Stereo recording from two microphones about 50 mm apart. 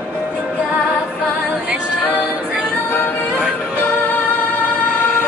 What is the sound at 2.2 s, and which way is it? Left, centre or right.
A capella, right.